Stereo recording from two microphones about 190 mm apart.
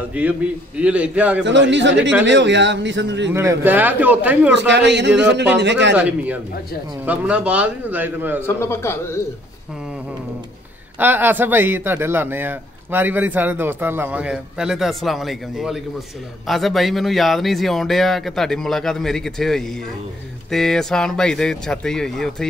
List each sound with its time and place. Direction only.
0.2 s speech: 10° right (ahead or behind)
1.4 s speech: 70° right (ahead or behind)
3.3 s speech: 10° right (ahead or behind)
4.6 s speech: 65° right (ahead or behind)
5.9 s speech: 10° right (ahead or behind)
8.4 s speech: 15° left (ahead or behind)
11.0 s speech: 10° right (ahead or behind)